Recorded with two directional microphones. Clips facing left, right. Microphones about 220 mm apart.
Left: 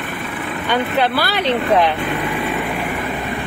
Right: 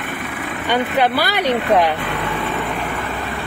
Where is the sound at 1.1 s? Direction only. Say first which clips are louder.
Even; 15° right (ahead or behind).